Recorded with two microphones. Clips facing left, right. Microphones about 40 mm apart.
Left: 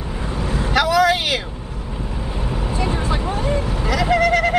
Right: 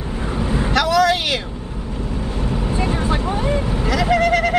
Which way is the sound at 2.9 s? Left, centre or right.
Centre.